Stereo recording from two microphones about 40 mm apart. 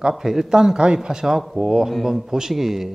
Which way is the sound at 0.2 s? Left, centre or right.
Centre.